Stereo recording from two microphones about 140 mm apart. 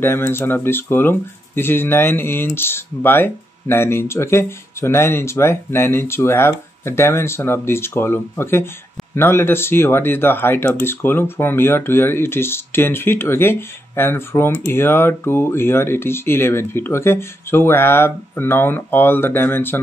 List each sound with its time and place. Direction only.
0.0 s speech: 15° left (ahead or behind)